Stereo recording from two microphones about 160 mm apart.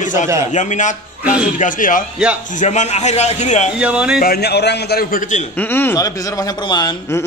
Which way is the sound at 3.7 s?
5° right (ahead or behind).